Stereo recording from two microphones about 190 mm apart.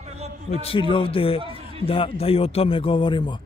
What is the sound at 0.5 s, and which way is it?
Speech, 30° left (ahead or behind).